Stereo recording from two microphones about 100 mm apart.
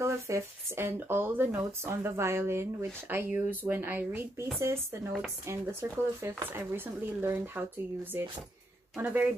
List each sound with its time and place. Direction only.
0.0 s speech: 25° right (ahead or behind)